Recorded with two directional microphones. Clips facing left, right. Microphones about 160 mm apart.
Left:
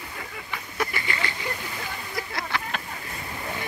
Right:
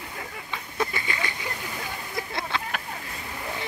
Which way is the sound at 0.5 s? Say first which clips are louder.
Right 1 dB; 20° right (ahead or behind).